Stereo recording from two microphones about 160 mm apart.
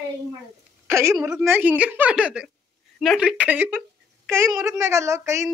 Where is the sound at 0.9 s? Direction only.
15° right (ahead or behind).